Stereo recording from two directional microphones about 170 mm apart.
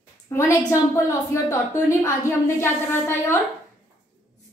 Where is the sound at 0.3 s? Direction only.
15° left (ahead or behind).